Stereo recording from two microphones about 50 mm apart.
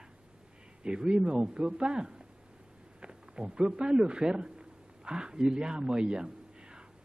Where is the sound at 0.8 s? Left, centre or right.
Centre.